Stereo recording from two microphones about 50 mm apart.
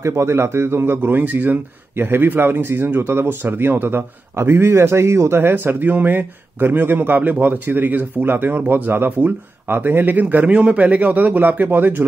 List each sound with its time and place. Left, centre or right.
0.0 s a man's voice: right
5.4 s a man's voice: right